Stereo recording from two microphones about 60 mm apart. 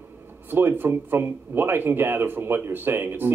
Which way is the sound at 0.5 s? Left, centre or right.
Right.